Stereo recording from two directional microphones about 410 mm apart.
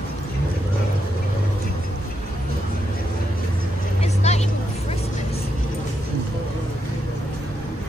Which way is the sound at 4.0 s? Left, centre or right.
Centre.